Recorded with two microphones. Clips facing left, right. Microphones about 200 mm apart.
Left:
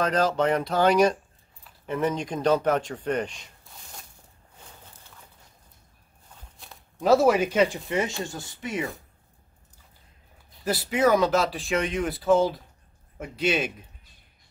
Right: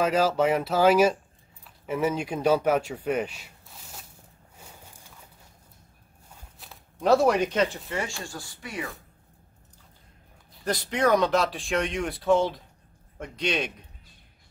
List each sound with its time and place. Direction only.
0.0 s speech: 5° right (ahead or behind)
4.6 s horse: 10° right (ahead or behind)
6.6 s speech: centre (ahead or behind); by 8.9 s 20° left (ahead or behind)
10.6 s speech: 5° left (ahead or behind)